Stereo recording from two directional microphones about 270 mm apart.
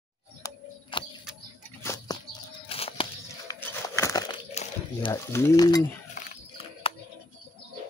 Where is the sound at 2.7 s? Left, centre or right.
Left.